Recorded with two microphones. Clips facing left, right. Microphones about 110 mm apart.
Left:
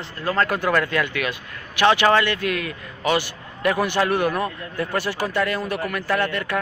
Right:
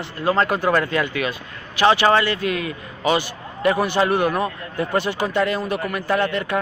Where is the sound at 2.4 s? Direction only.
65° left (ahead or behind).